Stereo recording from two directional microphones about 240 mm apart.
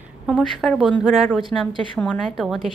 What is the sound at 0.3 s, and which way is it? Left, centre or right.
A woman's voice, centre.